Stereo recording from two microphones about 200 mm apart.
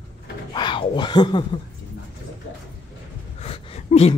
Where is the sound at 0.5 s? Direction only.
25° left (ahead or behind).